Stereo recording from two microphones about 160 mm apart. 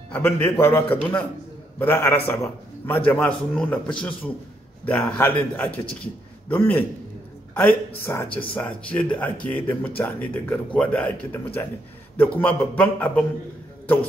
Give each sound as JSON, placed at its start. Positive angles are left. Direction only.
{"t": 0.1, "sound": "a man's voice", "side_deg": 10}
{"t": 6.5, "sound": "speech", "side_deg": 10}